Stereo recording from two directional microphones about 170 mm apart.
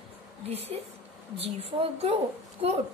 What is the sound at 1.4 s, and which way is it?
A woman's voice, 35° right (ahead or behind).